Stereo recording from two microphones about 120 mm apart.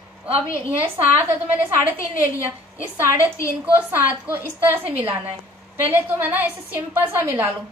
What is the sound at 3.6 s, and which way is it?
A woman's voice, 20° right (ahead or behind).